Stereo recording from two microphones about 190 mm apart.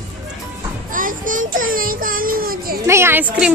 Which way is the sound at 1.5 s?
45° right (ahead or behind).